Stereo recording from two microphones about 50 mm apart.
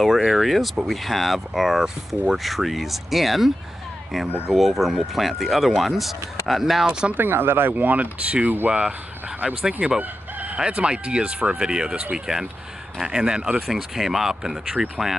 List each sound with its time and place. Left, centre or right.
0.0 s speech: centre
6.9 s speech: centre
7.2 s speech: right
7.7 s speech: right; by 9.9 s centre
9.9 s chicken: right
10.6 s speech: centre
13.7 s speech: centre